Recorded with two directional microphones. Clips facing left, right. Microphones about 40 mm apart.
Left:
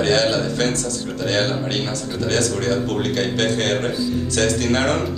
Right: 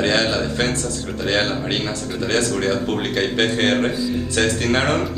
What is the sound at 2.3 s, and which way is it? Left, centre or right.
Speech, right.